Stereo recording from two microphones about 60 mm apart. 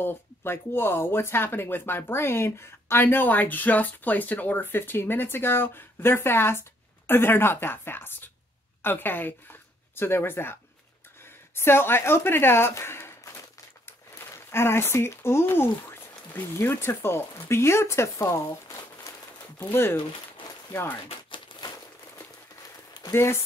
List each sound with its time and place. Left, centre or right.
0.0 s speech: left
14.3 s speech: left
18.3 s crumpling: left
19.6 s speech: left
23.1 s speech: left